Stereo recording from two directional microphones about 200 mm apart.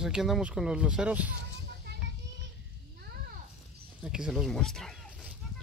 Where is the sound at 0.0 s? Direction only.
Centre (ahead or behind).